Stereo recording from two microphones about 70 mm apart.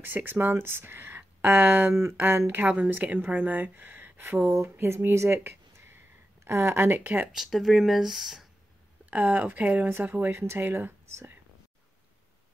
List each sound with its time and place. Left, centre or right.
0.0 s speech: right
7.3 s speech: centre
9.1 s speech: right
9.8 s speech: right